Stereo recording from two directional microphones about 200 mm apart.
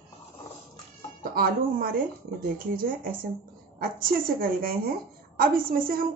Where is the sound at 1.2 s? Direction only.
45° right (ahead or behind).